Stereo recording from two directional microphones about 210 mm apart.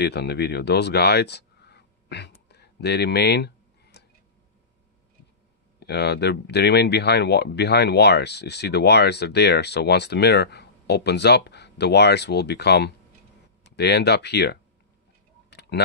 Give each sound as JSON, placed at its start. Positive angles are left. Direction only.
{"t": 0.0, "sound": "speech", "side_deg": 50}
{"t": 5.8, "sound": "speech", "side_deg": 50}